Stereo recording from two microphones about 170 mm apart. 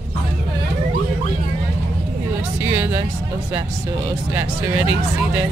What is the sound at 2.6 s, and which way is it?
Speech, 10° right (ahead or behind).